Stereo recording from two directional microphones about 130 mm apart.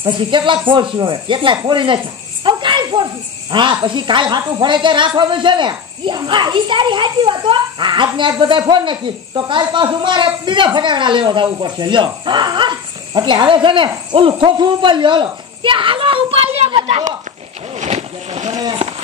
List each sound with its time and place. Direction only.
0.0 s speech: 40° right (ahead or behind)
2.4 s snake: 35° right (ahead or behind)
3.5 s speech: 35° right (ahead or behind)
17.7 s a sound: 60° right (ahead or behind)